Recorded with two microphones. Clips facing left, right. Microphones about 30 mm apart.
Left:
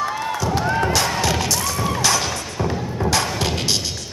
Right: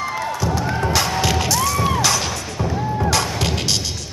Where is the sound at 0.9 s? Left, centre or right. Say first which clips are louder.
Right 1 dB; centre.